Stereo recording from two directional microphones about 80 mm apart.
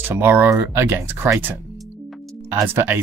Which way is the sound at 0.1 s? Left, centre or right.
Right.